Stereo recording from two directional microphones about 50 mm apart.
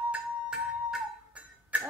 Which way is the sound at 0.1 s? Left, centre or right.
Centre.